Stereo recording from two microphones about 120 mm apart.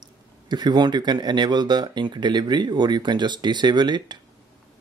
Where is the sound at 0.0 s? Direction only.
35° right (ahead or behind).